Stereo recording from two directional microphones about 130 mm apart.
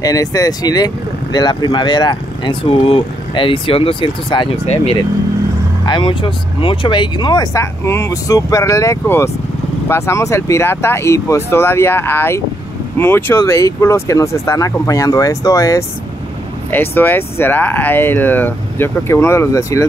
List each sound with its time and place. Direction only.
0.0 s speech: 25° left (ahead or behind)